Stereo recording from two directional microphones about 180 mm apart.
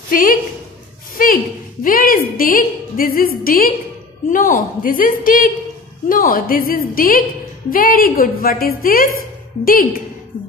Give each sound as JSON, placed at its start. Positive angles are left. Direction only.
{"t": 0.1, "sound": "a woman's voice", "side_deg": 50}